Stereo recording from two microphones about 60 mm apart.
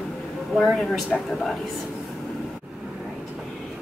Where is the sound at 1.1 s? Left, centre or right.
Centre.